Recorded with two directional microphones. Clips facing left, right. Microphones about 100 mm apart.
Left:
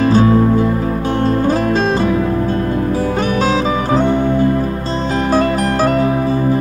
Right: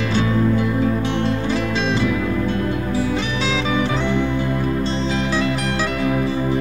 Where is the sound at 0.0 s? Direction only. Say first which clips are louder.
Left 8 dB; 40° left (ahead or behind).